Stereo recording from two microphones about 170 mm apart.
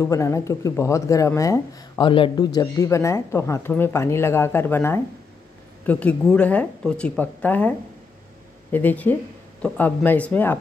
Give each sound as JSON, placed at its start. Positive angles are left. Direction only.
{"t": 0.0, "sound": "speech", "side_deg": 20}
{"t": 8.7, "sound": "speech", "side_deg": 10}